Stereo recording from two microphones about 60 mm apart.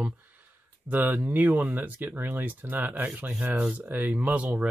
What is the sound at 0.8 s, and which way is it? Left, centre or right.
Speech, right.